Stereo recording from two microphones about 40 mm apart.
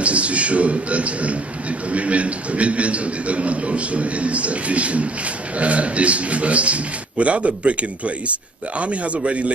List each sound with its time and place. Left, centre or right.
0.0 s a man's voice: right